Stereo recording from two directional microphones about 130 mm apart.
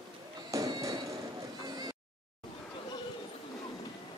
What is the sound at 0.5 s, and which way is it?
Fireworks, 25° right (ahead or behind).